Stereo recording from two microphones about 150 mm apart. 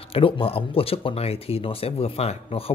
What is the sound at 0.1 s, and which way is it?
Speech, 40° left (ahead or behind).